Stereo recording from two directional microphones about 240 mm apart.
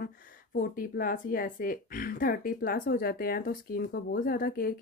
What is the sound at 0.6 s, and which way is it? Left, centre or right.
A woman's voice, left.